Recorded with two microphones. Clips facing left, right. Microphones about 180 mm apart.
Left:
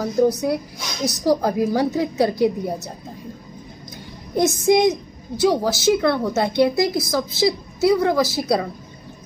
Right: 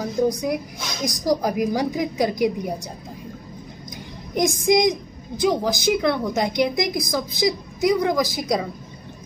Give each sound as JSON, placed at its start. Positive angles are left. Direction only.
{"t": 0.0, "sound": "a woman's voice", "side_deg": -15}
{"t": 4.4, "sound": "a woman's voice", "side_deg": -15}